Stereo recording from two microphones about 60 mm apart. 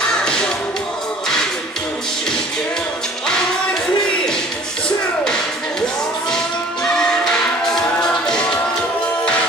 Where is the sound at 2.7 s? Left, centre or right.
Centre.